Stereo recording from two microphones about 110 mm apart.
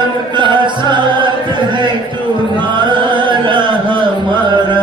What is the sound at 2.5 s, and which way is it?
Chant, 45° right (ahead or behind).